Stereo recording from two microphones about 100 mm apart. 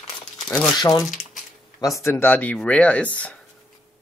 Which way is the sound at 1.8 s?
30° left (ahead or behind).